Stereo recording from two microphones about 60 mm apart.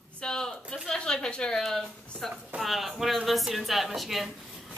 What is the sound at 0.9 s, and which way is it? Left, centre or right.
A woman's voice, centre.